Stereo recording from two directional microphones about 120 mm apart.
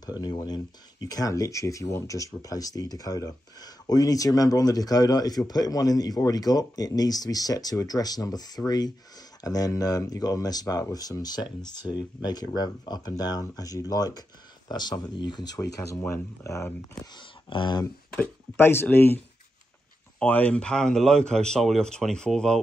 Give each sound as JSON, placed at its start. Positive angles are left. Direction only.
{"t": 0.2, "sound": "speech", "side_deg": 35}
{"t": 17.0, "sound": "speech", "side_deg": 40}
{"t": 18.6, "sound": "speech", "side_deg": 20}
{"t": 20.2, "sound": "speech", "side_deg": 10}